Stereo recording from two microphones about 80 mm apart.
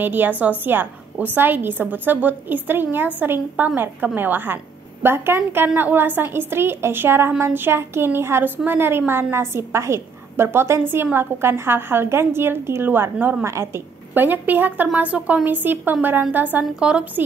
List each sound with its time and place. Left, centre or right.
0.0 s a woman's voice: right
13.4 s a woman's voice: right
14.1 s a woman's voice: right